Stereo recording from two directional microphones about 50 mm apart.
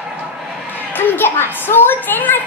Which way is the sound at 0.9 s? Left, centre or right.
Left.